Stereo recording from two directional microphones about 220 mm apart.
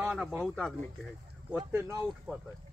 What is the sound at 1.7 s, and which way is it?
Speech, 10° right (ahead or behind).